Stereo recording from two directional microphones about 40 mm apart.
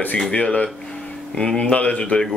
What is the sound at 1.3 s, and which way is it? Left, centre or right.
Speech, left.